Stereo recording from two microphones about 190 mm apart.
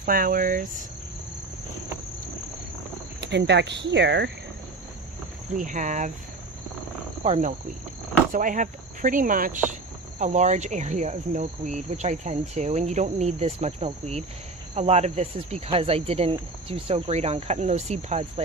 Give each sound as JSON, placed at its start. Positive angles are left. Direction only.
{"t": 0.0, "sound": "speech", "side_deg": -50}
{"t": 3.2, "sound": "speech", "side_deg": -65}
{"t": 5.6, "sound": "cricket", "side_deg": -40}
{"t": 7.2, "sound": "cricket", "side_deg": -40}
{"t": 8.3, "sound": "speech", "side_deg": -45}
{"t": 9.7, "sound": "cricket", "side_deg": -40}